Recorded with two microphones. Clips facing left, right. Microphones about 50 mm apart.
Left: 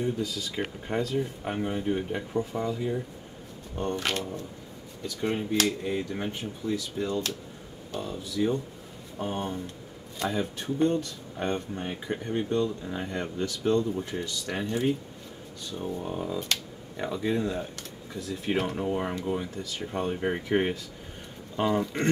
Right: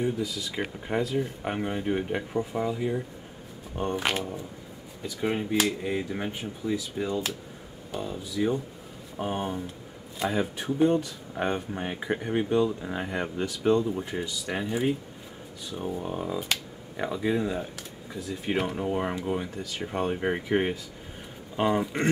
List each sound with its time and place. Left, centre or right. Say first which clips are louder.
0.0 s speech: right 1 dB; centre; by 2.2 s right
2.3 s speech: even; centre